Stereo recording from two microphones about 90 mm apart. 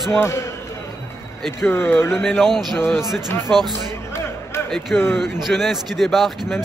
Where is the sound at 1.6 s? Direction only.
25° left (ahead or behind).